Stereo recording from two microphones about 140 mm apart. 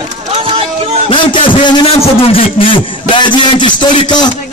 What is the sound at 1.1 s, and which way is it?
A man's voice, 35° left (ahead or behind).